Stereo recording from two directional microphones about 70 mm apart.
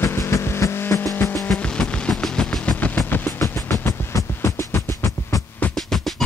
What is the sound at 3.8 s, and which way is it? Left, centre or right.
Music, left.